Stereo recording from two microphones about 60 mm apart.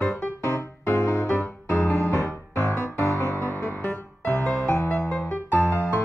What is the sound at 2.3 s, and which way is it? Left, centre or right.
Music, right.